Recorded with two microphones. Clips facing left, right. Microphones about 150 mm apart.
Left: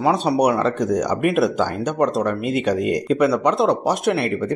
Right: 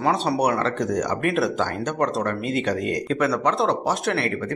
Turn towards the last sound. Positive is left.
turn(degrees=20)  # may be behind; listen again after turning